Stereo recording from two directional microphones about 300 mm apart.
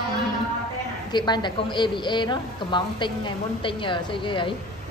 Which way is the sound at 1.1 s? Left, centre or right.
Centre.